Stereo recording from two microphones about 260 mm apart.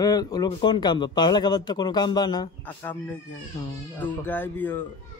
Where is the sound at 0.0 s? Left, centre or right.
Centre.